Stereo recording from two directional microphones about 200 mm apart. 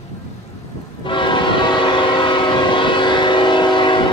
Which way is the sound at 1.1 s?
25° left (ahead or behind).